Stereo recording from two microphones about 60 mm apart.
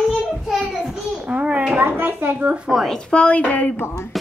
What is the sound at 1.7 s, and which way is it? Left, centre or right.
Speech, right.